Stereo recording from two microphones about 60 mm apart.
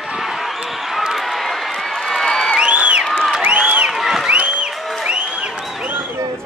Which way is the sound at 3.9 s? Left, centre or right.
Centre.